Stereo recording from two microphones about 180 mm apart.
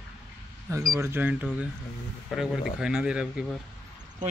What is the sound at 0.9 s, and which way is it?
Speech, 15° right (ahead or behind).